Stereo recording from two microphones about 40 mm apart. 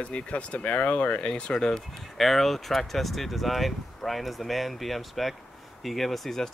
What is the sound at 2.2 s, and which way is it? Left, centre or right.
Speech, centre.